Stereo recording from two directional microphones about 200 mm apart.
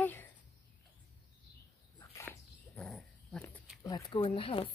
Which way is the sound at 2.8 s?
5° left (ahead or behind).